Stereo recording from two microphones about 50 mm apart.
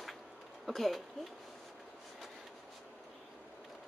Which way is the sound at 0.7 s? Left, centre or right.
Centre.